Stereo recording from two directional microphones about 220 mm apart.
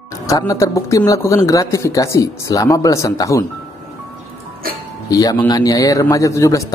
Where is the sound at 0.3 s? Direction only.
15° left (ahead or behind).